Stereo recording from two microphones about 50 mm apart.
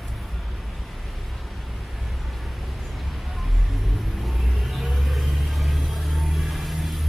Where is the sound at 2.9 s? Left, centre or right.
Centre.